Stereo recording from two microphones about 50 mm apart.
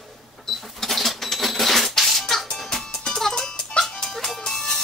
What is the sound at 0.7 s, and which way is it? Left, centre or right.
Cash register, centre.